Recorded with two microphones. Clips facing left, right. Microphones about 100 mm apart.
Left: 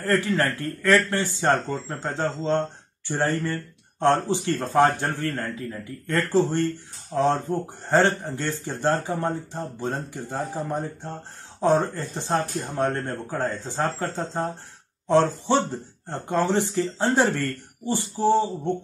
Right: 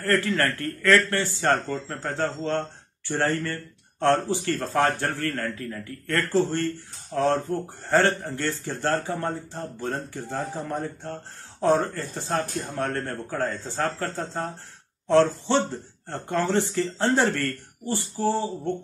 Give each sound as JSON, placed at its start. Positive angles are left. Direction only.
{"t": 0.0, "sound": "a man's voice", "side_deg": 15}